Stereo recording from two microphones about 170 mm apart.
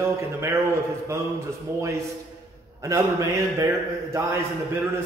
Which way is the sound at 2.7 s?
20° right (ahead or behind).